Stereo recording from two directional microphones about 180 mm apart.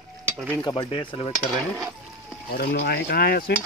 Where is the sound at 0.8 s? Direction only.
30° left (ahead or behind).